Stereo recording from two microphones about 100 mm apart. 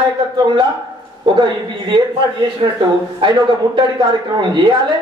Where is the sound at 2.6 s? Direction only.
60° right (ahead or behind).